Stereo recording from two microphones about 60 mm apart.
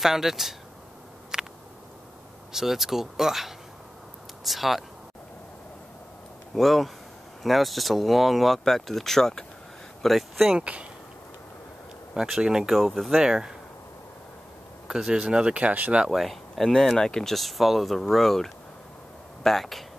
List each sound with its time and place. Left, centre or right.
0.0 s speech: centre
1.3 s a sound: centre
2.5 s speech: centre
6.5 s speech: centre
10.5 s speech: centre
12.1 s speech: centre
14.9 s speech: centre
16.1 s speech: centre